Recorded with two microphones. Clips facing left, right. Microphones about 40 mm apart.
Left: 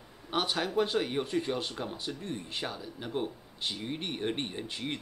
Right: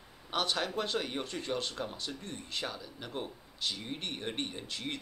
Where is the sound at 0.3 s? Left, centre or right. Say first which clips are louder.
Left 2 dB; centre.